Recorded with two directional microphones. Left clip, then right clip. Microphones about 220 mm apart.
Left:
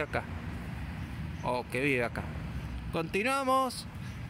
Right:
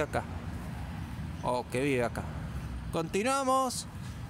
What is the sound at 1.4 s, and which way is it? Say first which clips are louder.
Speech: right 1 dB; 10° right (ahead or behind).